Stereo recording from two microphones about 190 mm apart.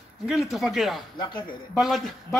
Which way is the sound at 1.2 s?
25° left (ahead or behind).